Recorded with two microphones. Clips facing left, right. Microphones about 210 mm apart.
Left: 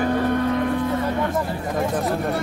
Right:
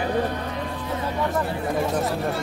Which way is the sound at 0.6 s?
60° left (ahead or behind).